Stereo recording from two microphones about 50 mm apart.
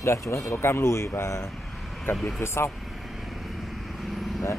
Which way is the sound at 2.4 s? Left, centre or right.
Left.